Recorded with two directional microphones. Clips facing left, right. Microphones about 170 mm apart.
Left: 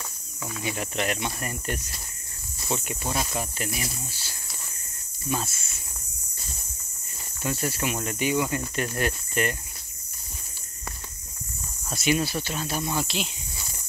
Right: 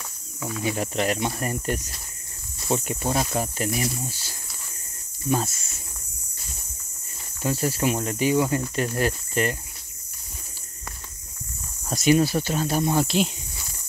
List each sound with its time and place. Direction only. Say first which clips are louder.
0.4 s speech: right 5 dB; centre (ahead or behind)
0.7 s speech: right 4 dB; 35° right (ahead or behind)
7.4 s speech: right 5 dB; 35° right (ahead or behind)
11.9 s speech: right 6 dB; 40° right (ahead or behind)